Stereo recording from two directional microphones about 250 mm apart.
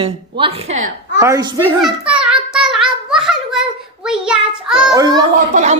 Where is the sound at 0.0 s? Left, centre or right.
Right.